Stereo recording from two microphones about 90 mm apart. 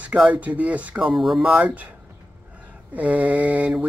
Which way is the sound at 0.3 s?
15° right (ahead or behind).